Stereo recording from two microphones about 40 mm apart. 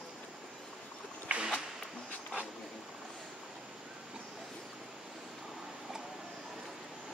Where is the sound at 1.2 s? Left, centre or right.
Right.